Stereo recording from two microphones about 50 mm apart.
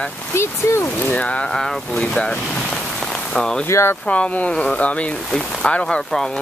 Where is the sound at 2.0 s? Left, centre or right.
Left.